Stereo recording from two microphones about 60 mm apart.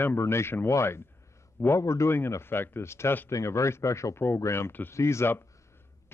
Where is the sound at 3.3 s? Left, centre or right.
Left.